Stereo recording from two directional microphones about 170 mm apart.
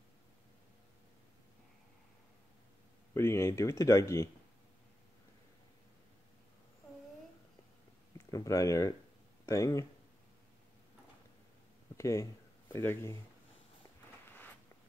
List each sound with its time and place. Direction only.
3.2 s speech: 15° left (ahead or behind)
8.3 s speech: 20° left (ahead or behind)
12.0 s speech: 15° left (ahead or behind)